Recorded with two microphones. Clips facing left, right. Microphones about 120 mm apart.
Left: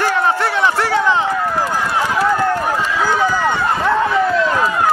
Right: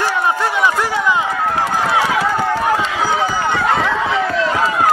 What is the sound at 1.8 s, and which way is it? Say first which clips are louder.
Run: right 2 dB; 70° right (ahead or behind).